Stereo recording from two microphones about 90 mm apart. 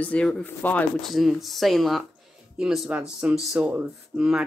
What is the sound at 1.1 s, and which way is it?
Speech, centre (ahead or behind).